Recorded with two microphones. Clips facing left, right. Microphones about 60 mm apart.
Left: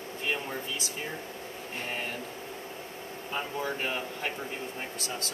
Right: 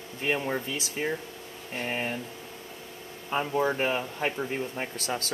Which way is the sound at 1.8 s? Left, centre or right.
Right.